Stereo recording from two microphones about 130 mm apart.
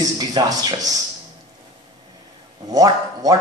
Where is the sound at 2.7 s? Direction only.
30° right (ahead or behind).